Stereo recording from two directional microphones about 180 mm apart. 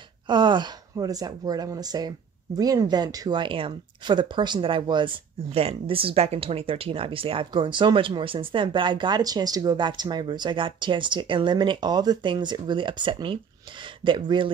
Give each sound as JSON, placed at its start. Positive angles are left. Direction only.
{"t": 0.3, "sound": "speech", "side_deg": -25}